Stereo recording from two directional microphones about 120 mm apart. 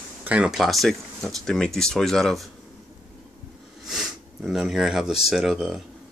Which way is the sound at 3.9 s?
Centre (ahead or behind).